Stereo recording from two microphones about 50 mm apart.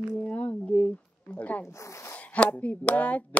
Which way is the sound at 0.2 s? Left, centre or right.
Left.